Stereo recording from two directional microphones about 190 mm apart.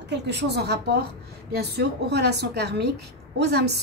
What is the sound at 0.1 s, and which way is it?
A woman's voice, 60° right (ahead or behind).